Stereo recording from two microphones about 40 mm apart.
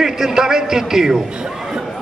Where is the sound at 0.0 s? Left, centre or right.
Centre.